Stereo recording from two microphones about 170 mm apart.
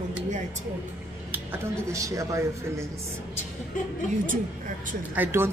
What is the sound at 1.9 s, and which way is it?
Speech, 20° right (ahead or behind).